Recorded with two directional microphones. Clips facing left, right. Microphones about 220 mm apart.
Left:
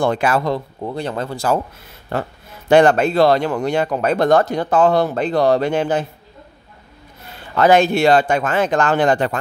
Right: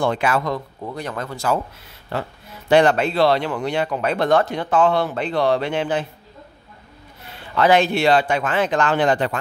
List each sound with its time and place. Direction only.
0.0 s speech: 45° left (ahead or behind)
2.7 s speech: 45° left (ahead or behind)
7.5 s speech: 45° left (ahead or behind)